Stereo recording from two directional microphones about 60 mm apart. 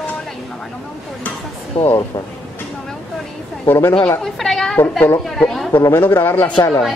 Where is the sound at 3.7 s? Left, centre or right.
Left.